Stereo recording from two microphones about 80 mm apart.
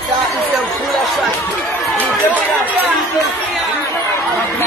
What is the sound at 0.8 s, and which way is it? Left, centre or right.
Speech, centre.